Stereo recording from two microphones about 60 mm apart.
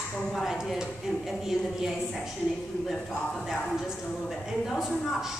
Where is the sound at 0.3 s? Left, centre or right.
Centre.